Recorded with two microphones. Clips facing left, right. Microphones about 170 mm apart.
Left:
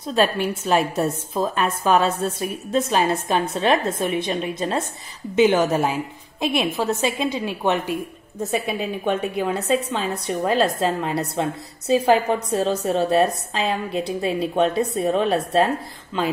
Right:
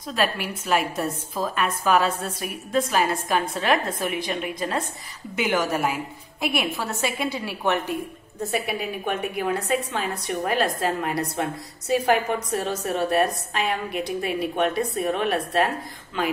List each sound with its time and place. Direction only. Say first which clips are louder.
0.0 s a woman's voice: left 5 dB; 30° left (ahead or behind)